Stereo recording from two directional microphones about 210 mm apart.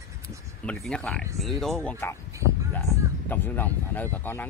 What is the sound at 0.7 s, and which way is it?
Speech, 5° left (ahead or behind).